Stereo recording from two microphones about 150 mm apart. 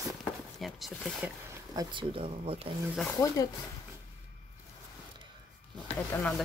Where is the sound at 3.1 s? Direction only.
20° left (ahead or behind).